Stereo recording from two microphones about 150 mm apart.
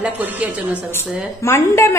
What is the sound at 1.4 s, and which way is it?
Speech, 15° left (ahead or behind).